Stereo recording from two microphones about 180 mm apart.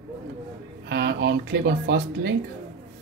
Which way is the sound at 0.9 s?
75° right (ahead or behind).